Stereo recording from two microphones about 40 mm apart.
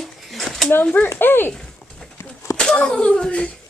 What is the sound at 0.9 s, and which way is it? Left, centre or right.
Speech, left.